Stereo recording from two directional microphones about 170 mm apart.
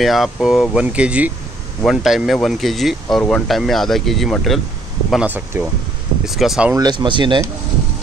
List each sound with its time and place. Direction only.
0.0 s speech: centre (ahead or behind)
6.7 s speech: 25° right (ahead or behind)